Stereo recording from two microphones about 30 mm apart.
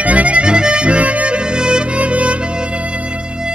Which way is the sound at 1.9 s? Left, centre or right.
Right.